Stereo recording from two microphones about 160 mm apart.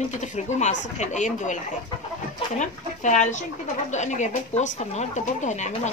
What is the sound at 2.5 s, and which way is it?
A woman's voice, 50° left (ahead or behind).